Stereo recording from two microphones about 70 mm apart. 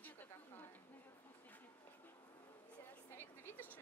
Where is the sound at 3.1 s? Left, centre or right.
Left.